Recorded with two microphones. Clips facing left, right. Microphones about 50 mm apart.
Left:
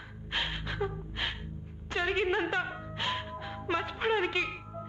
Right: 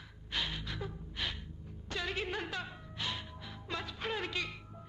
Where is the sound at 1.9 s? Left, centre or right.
Left.